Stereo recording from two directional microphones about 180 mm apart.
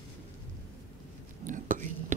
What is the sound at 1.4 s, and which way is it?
Whispering, 45° right (ahead or behind).